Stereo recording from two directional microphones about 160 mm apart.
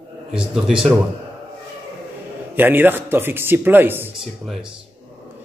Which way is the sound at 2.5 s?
10° right (ahead or behind).